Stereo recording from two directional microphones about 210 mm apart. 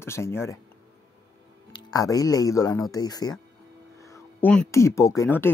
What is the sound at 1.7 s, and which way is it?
Speech, 20° left (ahead or behind).